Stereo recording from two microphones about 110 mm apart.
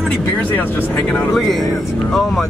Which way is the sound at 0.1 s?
15° left (ahead or behind).